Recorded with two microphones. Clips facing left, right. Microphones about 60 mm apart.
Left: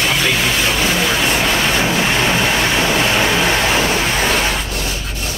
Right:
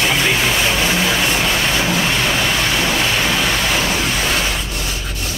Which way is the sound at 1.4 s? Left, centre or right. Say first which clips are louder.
Left 2 dB; centre.